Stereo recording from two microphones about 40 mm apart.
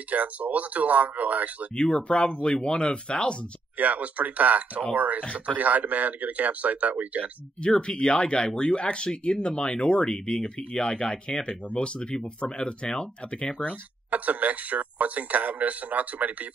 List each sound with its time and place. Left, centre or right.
0.1 s speech: right
1.8 s speech: left
3.7 s speech: right
5.2 s speech: left
5.6 s speech: right
7.6 s speech: left
14.1 s speech: right